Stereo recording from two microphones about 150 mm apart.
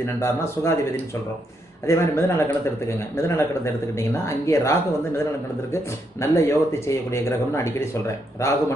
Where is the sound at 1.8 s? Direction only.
20° left (ahead or behind).